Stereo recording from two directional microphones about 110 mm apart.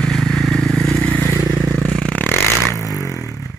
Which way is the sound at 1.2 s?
20° right (ahead or behind).